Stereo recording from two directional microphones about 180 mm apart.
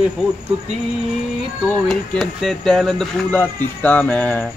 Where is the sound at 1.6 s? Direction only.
Centre (ahead or behind).